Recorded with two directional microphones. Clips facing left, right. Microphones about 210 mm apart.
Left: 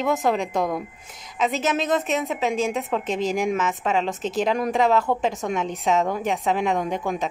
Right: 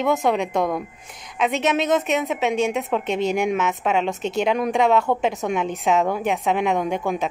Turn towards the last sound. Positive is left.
turn(degrees=0)  # may be behind; listen again after turning